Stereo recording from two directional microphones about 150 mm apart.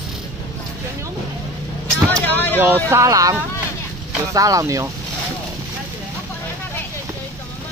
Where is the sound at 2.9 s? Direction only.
20° right (ahead or behind).